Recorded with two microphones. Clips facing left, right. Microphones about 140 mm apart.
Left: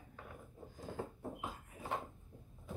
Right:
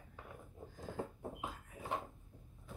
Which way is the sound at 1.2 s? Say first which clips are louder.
Even; 15° right (ahead or behind).